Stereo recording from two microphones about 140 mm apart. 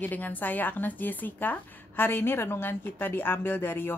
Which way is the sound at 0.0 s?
10° left (ahead or behind).